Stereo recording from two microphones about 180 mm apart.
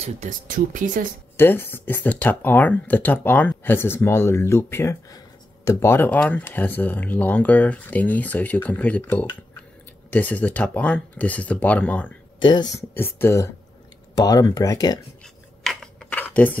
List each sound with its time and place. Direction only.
0.0 s speech: 45° right (ahead or behind)
1.3 s speech: 10° left (ahead or behind)
12.4 s speech: 25° left (ahead or behind)
12.9 s speech: 10° left (ahead or behind)
15.2 s scissors: centre (ahead or behind)